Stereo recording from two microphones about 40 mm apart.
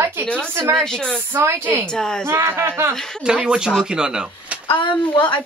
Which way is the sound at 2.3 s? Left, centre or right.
Right.